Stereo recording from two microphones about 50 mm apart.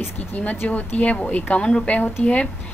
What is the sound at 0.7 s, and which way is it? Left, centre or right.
A woman's voice, left.